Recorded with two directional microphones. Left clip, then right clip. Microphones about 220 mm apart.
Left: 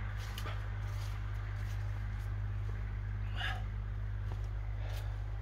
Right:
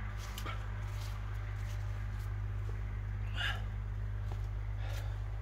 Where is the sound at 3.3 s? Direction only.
40° right (ahead or behind).